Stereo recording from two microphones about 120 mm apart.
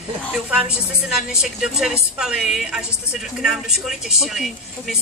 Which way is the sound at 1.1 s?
5° right (ahead or behind).